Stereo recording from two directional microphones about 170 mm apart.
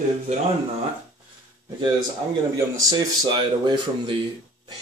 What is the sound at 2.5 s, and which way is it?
A man's voice, 20° right (ahead or behind).